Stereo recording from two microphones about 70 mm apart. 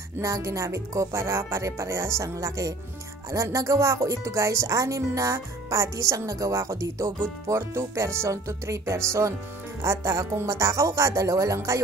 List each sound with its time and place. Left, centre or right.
0.2 s speech: right